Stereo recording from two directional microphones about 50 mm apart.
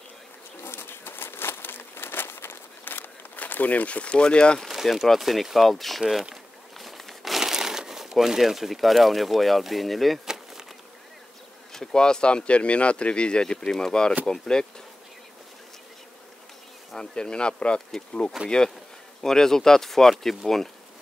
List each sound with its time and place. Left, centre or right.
0.7 s crumpling: left; by 4.6 s centre
4.6 s speech: centre
6.8 s crumpling: centre
10.2 s bee: centre
11.7 s speech: centre
16.9 s speech: centre
18.4 s speech: centre
19.2 s speech: centre